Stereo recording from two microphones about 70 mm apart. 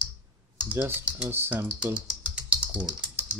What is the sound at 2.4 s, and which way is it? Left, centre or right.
Typing, centre.